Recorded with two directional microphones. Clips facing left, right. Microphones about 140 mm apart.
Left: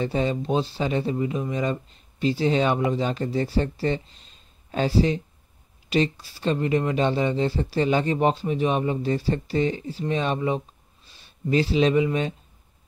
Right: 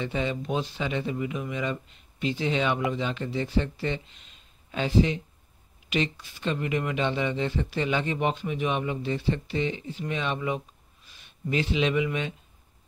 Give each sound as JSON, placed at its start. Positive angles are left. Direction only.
{"t": 0.0, "sound": "speech", "side_deg": 35}